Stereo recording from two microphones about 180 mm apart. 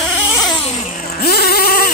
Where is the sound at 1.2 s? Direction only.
60° left (ahead or behind).